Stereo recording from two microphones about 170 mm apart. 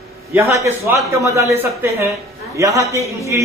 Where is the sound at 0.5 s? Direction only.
15° right (ahead or behind).